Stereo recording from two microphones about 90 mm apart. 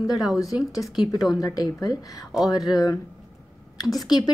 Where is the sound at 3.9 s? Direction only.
45° left (ahead or behind).